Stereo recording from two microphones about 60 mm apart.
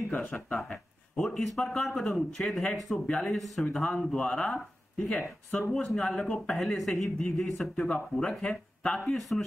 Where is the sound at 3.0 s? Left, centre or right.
Left.